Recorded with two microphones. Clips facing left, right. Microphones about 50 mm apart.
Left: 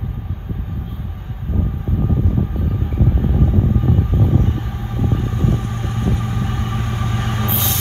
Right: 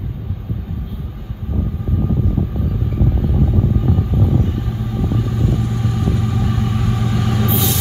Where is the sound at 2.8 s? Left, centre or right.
Left.